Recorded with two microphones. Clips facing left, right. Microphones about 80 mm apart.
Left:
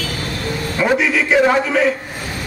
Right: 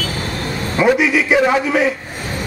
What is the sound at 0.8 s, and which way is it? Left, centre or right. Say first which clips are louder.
A man's voice: right 3 dB; centre.